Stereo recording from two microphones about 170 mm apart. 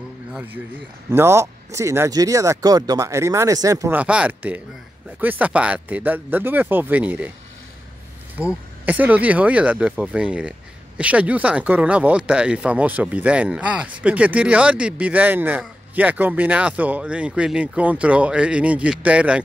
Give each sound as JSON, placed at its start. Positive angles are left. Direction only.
{"t": 0.3, "sound": "speech", "side_deg": -10}
{"t": 8.4, "sound": "speech", "side_deg": -10}